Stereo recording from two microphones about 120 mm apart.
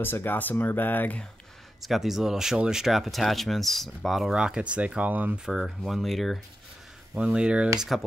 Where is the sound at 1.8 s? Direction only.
Centre (ahead or behind).